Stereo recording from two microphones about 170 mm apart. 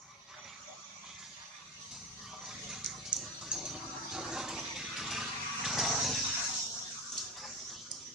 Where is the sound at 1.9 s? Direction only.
5° right (ahead or behind).